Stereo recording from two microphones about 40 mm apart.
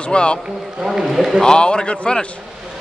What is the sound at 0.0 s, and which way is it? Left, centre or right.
Speech, left.